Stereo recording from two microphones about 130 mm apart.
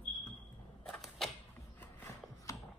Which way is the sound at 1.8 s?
20° left (ahead or behind).